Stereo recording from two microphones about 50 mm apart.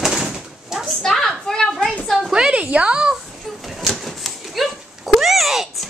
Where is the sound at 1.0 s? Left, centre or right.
Centre.